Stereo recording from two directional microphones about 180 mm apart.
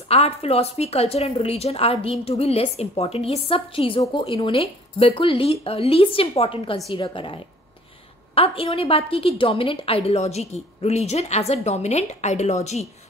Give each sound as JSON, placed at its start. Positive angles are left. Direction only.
{"t": 0.1, "sound": "a woman's voice", "side_deg": 35}